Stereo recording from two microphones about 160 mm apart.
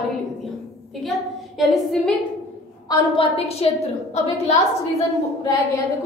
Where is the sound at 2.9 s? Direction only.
35° left (ahead or behind).